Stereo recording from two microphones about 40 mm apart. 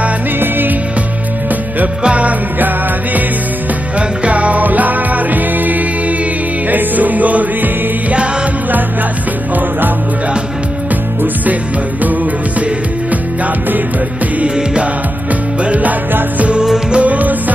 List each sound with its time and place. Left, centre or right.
0.4 s music: right
2.0 s music: right
4.2 s music: right
15.6 s music: right
16.5 s music: centre
16.9 s music: right